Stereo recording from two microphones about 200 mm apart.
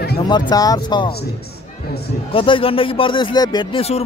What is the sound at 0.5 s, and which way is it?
Speech, 20° left (ahead or behind).